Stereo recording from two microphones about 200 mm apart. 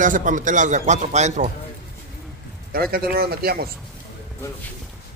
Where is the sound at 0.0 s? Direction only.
40° right (ahead or behind).